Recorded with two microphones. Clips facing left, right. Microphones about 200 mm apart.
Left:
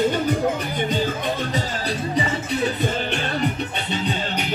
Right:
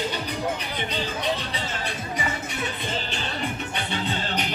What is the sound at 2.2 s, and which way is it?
Music, 35° left (ahead or behind).